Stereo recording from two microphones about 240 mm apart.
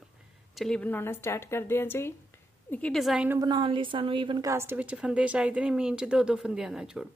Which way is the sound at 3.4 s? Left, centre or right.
Centre.